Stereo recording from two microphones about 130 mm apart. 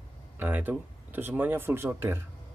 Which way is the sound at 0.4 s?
15° right (ahead or behind).